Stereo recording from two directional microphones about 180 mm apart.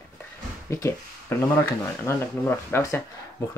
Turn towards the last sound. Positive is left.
turn(degrees=15)  # may be behind; listen again after turning